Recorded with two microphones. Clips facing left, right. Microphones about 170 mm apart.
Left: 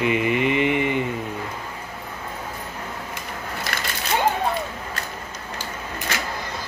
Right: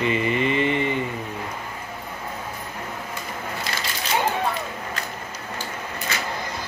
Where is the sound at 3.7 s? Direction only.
65° left (ahead or behind).